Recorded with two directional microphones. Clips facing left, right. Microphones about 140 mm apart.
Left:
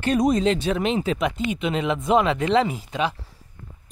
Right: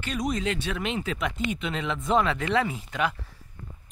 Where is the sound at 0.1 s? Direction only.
35° left (ahead or behind).